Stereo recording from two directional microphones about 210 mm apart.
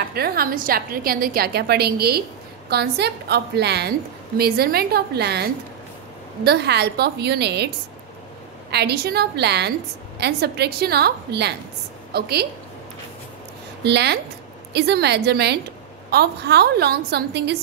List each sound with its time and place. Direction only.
0.1 s a woman's voice: 45° right (ahead or behind)
13.8 s a woman's voice: 55° right (ahead or behind)